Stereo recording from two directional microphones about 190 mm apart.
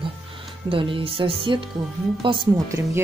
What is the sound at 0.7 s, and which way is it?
Speech, 30° right (ahead or behind).